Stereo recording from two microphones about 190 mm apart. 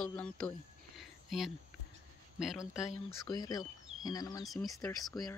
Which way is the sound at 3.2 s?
20° left (ahead or behind).